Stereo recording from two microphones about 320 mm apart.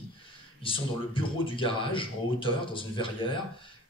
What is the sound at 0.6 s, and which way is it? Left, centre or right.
Speech, centre.